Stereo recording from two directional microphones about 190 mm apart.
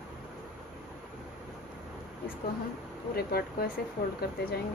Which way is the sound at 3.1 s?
55° left (ahead or behind).